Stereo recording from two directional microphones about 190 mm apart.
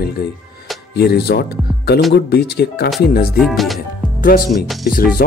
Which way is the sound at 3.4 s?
Centre (ahead or behind).